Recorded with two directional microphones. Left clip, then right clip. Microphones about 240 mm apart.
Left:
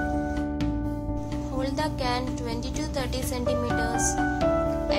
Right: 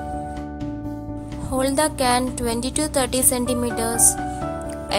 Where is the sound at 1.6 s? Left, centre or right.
Right.